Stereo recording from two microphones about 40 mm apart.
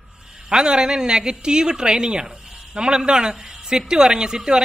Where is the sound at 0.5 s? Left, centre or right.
Centre.